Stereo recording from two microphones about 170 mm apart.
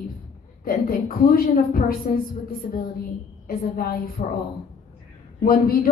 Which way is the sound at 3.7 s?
55° left (ahead or behind).